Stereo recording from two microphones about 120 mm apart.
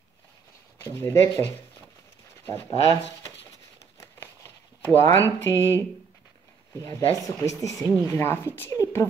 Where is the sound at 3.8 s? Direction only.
25° left (ahead or behind).